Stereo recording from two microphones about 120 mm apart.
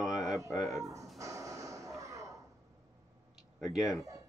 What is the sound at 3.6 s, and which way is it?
Speech, 5° right (ahead or behind).